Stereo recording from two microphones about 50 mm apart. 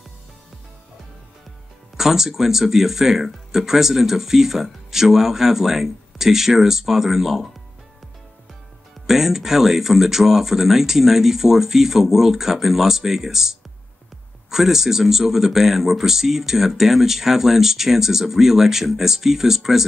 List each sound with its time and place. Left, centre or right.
2.0 s speech: centre
9.0 s speech: centre